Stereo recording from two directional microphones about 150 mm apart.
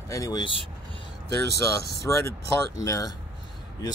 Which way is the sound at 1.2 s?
90° left.